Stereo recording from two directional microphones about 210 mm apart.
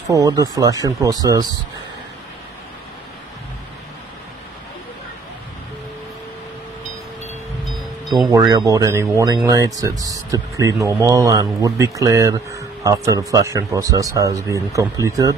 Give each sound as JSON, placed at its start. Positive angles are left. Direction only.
{"t": 0.1, "sound": "speech", "side_deg": -15}
{"t": 8.3, "sound": "speech", "side_deg": -15}